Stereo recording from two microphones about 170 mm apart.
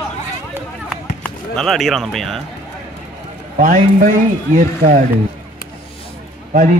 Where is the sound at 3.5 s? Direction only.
50° right (ahead or behind).